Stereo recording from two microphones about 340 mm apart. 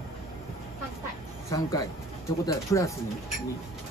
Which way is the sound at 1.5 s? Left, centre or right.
Centre.